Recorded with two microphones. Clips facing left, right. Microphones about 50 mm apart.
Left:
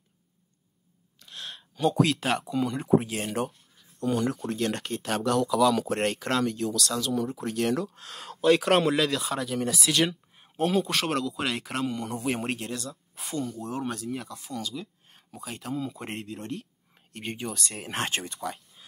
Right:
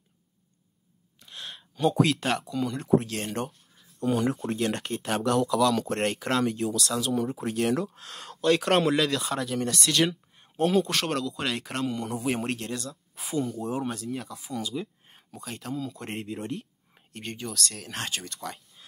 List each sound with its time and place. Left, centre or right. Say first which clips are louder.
1.2 s a sound: even; centre
2.5 s speech: left 1 dB; centre
3.7 s speech: right 2 dB; centre
13.6 s speech: right 3 dB; centre
13.8 s speech: even; centre
14.6 s a sound: right 3 dB; centre
15.3 s speech: left 1 dB; centre
16.4 s a sound: right 1 dB; centre
17.2 s speech: even; centre; by 18.3 s left